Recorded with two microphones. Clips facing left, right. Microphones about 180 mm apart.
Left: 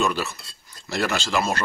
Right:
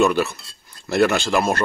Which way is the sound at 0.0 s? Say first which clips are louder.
Right 7 dB; 60° right (ahead or behind).